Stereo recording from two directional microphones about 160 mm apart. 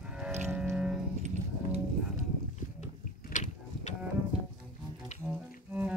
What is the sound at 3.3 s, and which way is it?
Mechanisms, 50° left (ahead or behind).